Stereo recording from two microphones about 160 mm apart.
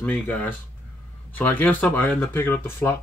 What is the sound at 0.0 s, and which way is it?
Speech, 10° left (ahead or behind).